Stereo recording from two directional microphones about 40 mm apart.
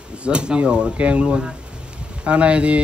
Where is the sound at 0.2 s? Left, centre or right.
Right.